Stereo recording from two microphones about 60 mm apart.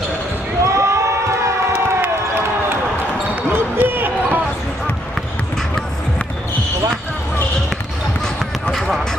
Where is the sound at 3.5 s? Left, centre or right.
Right.